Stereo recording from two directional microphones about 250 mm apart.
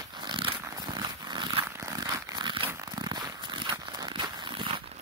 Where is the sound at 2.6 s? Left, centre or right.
Centre.